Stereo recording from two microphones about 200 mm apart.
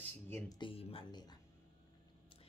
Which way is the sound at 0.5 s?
25° left (ahead or behind).